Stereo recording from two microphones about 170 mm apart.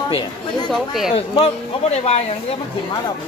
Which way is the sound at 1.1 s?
40° left (ahead or behind).